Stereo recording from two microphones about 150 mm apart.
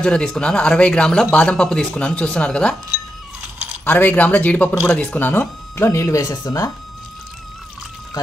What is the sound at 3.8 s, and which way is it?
Speech, 10° left (ahead or behind).